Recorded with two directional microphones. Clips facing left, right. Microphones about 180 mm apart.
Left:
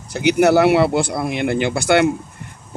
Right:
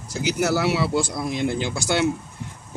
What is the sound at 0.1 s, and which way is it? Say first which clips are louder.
Speech: left 8 dB; 65° left (ahead or behind).